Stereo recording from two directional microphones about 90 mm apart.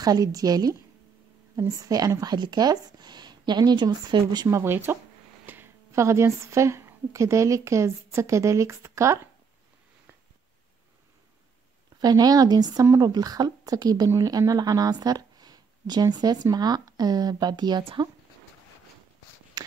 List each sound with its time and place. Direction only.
0.0 s a woman's voice: 45° right (ahead or behind)
2.3 s speech: 50° right (ahead or behind)
4.5 s a woman's voice: 35° right (ahead or behind)
5.5 s a sound: 20° right (ahead or behind)
5.9 s a woman's voice: 30° right (ahead or behind)
12.0 s speech: 45° right (ahead or behind)
12.8 s speech: 35° right (ahead or behind); by 17.8 s 50° right (ahead or behind)